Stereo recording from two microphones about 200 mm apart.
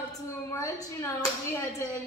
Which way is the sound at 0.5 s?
15° left (ahead or behind).